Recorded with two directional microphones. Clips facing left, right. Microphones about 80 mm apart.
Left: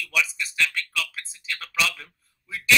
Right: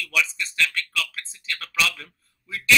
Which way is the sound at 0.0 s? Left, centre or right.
Centre.